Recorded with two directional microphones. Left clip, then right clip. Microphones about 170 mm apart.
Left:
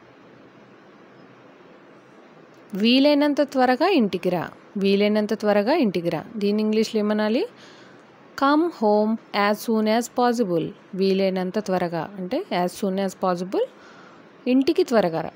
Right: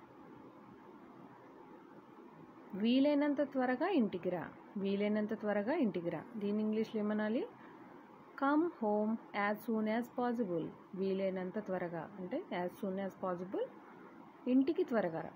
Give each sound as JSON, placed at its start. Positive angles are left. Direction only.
{"t": 2.8, "sound": "speech", "side_deg": 90}